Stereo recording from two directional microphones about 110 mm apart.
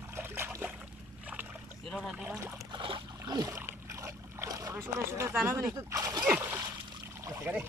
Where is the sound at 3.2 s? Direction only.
30° right (ahead or behind).